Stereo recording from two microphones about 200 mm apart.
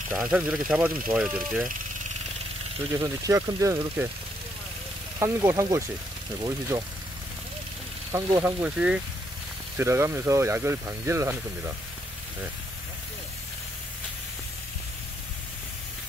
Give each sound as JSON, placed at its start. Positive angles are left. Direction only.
{"t": 0.1, "sound": "speech", "side_deg": -5}
{"t": 3.0, "sound": "speech", "side_deg": -15}
{"t": 5.2, "sound": "speech", "side_deg": -15}
{"t": 8.1, "sound": "speech", "side_deg": -15}